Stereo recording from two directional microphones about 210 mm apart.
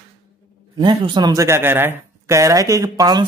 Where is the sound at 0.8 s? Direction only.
20° right (ahead or behind).